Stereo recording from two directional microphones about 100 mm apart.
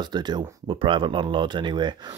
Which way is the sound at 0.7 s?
60° right (ahead or behind).